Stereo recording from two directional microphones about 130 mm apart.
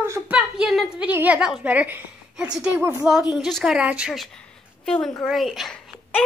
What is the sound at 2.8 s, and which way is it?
Speech, 20° right (ahead or behind).